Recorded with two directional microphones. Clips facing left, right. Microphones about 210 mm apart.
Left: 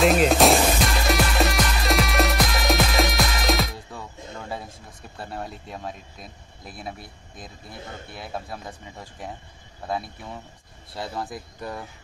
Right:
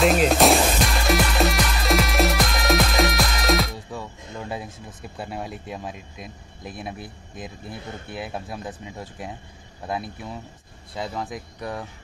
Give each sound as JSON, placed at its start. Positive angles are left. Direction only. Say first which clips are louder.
{"t": 0.0, "sound": "music", "louder": "even", "side_deg": 0}
{"t": 6.7, "sound": "speech", "louder": "right 2 dB", "side_deg": 0}
{"t": 8.1, "sound": "speech", "louder": "right 3 dB", "side_deg": -5}
{"t": 11.0, "sound": "speech", "louder": "right 2 dB", "side_deg": 0}